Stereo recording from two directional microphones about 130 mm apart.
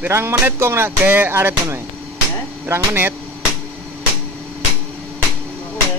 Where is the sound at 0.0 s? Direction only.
20° right (ahead or behind).